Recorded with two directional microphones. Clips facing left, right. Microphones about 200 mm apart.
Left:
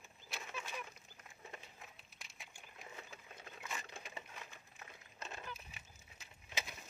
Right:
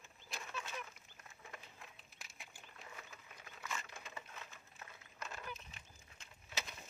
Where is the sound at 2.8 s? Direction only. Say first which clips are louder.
Left 2 dB; 25° left (ahead or behind).